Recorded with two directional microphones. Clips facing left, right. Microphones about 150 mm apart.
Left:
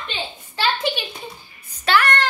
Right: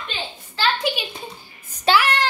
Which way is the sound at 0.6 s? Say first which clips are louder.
Even; centre (ahead or behind).